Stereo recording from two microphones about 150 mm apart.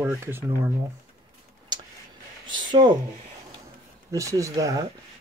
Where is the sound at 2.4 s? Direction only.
30° right (ahead or behind).